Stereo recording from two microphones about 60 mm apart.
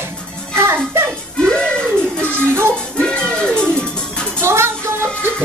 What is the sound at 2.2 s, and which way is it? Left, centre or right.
Music, right.